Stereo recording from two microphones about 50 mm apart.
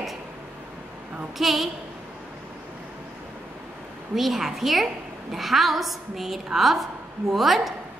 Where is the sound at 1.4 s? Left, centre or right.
Centre.